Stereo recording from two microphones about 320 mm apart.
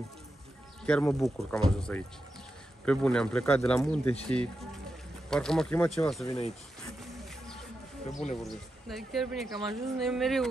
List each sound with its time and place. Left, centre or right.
0.8 s speech: centre
7.0 s music: centre
8.1 s speech: left
8.4 s speech: centre